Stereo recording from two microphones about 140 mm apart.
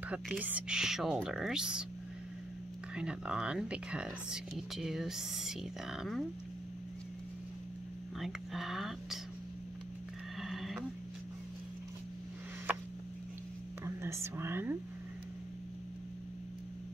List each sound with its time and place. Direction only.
0.1 s speech: 10° right (ahead or behind)
3.0 s speech: 5° right (ahead or behind)
8.2 s speech: centre (ahead or behind)
10.4 s frog: centre (ahead or behind)
13.8 s speech: 20° right (ahead or behind)